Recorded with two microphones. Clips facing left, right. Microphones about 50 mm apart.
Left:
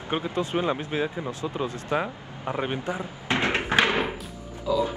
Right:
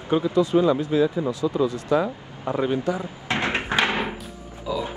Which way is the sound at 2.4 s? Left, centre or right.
Left.